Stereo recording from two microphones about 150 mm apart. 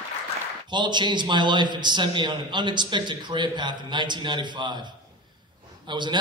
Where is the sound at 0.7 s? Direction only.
30° right (ahead or behind).